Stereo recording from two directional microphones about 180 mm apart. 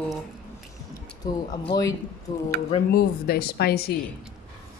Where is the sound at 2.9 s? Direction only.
55° left (ahead or behind).